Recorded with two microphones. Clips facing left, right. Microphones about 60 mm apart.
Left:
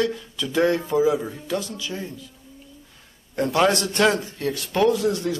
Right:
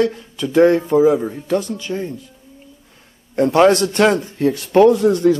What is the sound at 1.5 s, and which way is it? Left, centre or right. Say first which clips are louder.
Speech: right 8 dB; right.